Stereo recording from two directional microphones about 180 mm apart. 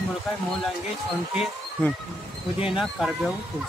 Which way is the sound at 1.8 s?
10° left (ahead or behind).